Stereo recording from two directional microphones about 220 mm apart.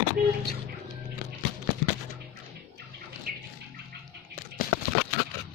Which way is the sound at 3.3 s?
40° right (ahead or behind).